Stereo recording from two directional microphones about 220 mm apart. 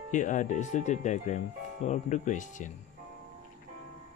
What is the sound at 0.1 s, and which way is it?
Speech, 35° left (ahead or behind).